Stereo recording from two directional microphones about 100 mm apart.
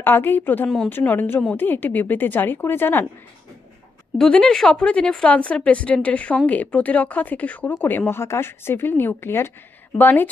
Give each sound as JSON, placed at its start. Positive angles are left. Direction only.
{"t": 0.0, "sound": "a woman's voice", "side_deg": 20}
{"t": 4.2, "sound": "a woman's voice", "side_deg": 10}